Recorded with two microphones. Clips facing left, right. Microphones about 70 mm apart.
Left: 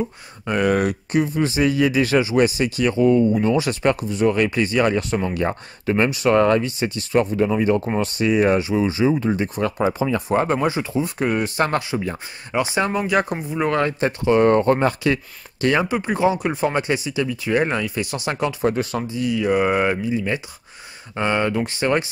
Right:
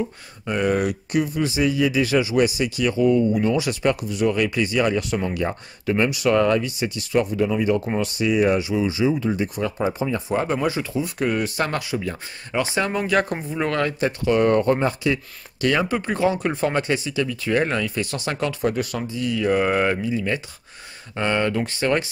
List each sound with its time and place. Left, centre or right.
0.5 s speech: left
1.1 s speech: left
9.6 s speech: left
10.2 s speech: left
10.7 s speech: left
12.5 s speech: centre
13.7 s speech: left
14.8 s speech: left
15.8 s speech: centre
18.7 s speech: left
19.2 s speech: centre